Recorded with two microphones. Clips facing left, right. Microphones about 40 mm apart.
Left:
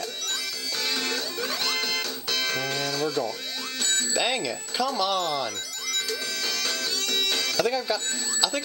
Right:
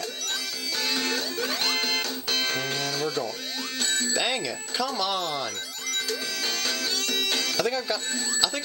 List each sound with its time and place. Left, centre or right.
0.9 s music: right
2.4 s music: right
4.1 s speech: centre
6.0 s music: right
7.2 s music: centre
7.5 s speech: centre